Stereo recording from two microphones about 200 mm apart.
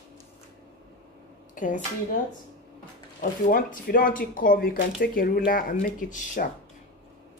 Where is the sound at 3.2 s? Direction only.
45° left (ahead or behind).